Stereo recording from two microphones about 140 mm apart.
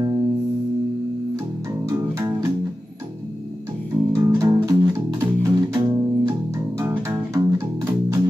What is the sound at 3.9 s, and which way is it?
Music, 20° right (ahead or behind).